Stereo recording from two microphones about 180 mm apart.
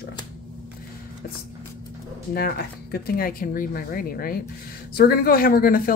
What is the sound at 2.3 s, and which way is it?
A woman's voice, 55° left (ahead or behind).